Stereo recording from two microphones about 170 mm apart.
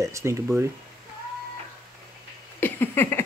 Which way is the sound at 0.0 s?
15° right (ahead or behind).